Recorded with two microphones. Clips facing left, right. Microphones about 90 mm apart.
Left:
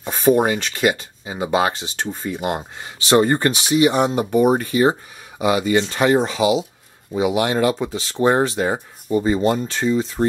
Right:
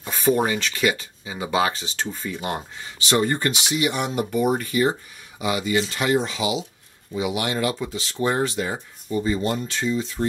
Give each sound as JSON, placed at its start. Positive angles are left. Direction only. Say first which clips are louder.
{"t": 0.0, "sound": "a sound", "louder": "left 5 dB", "side_deg": 20}
{"t": 0.5, "sound": "speech", "louder": "left 3 dB", "side_deg": 40}
{"t": 2.3, "sound": "speech", "louder": "left 5 dB", "side_deg": 25}
{"t": 2.8, "sound": "speech", "louder": "left 7 dB", "side_deg": 40}